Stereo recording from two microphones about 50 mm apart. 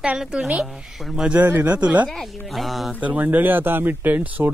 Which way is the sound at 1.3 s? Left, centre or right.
Right.